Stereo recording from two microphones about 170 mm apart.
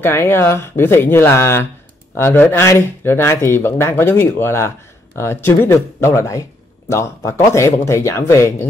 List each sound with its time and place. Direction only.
0.0 s speech: 15° left (ahead or behind)